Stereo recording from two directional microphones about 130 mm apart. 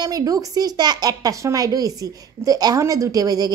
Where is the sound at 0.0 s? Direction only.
30° right (ahead or behind).